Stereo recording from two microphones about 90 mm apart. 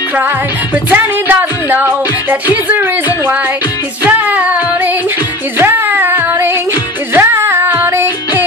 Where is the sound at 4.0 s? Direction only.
15° right (ahead or behind).